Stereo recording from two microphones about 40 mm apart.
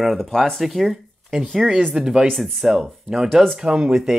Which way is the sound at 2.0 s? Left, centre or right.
Centre.